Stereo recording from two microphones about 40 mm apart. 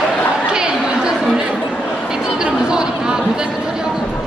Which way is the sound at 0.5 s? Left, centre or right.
Centre.